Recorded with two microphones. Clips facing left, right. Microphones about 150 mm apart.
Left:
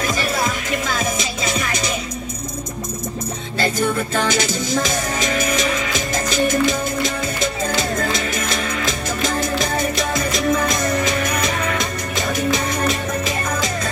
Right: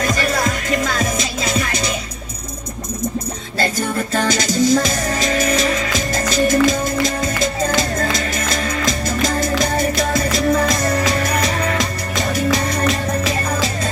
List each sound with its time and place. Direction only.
0.0 s music: 40° right (ahead or behind)
3.5 s music: 40° right (ahead or behind)